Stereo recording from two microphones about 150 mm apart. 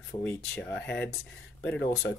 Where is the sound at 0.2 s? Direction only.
10° left (ahead or behind).